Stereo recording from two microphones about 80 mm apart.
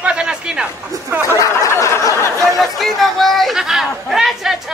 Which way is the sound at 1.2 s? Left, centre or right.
Left.